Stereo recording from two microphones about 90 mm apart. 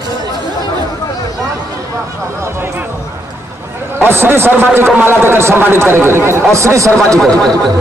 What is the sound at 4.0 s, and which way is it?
A man's voice, 25° right (ahead or behind).